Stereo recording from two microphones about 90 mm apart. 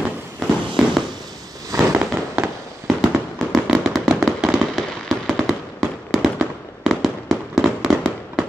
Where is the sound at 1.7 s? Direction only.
40° right (ahead or behind).